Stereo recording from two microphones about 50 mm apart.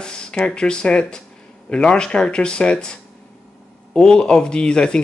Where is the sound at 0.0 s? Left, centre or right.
Centre.